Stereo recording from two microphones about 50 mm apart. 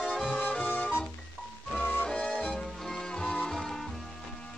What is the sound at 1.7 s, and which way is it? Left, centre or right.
Music, left.